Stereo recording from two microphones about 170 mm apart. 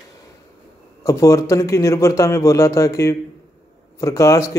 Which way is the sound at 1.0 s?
20° left (ahead or behind).